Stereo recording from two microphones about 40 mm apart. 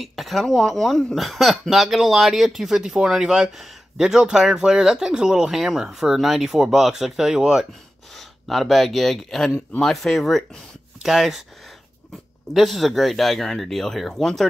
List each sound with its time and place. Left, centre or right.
0.0 s speech: centre
1.1 s speech: centre
5.5 s speech: centre
8.2 s speech: centre
11.0 s speech: centre
12.5 s speech: centre